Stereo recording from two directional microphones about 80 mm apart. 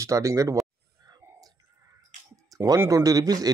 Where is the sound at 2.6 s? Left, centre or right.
Right.